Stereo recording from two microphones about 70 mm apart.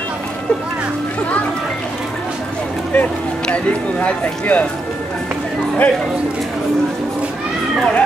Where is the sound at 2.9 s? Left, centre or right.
Left.